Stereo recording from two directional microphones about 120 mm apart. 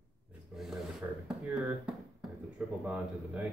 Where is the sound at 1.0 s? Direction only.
20° right (ahead or behind).